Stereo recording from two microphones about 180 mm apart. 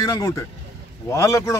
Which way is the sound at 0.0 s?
20° left (ahead or behind).